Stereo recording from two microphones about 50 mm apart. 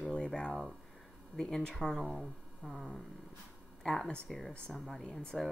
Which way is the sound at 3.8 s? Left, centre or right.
Centre.